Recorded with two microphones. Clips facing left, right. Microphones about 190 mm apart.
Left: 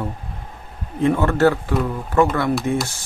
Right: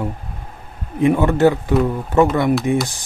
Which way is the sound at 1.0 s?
15° right (ahead or behind).